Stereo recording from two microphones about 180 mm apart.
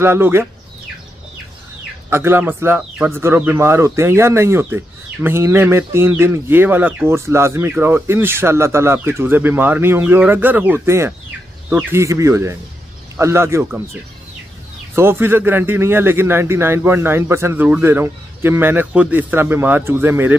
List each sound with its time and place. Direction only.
0.0 s speech: 15° right (ahead or behind)
2.0 s speech: 15° right (ahead or behind)
15.0 s speech: 15° right (ahead or behind)